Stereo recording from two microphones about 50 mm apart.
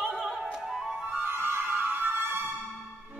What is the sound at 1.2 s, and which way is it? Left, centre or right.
Music, right.